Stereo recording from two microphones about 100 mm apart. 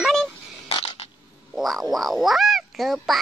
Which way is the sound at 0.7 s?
70° left (ahead or behind).